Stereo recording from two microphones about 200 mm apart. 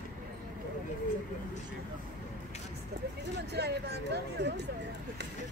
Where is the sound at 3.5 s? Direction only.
55° right (ahead or behind).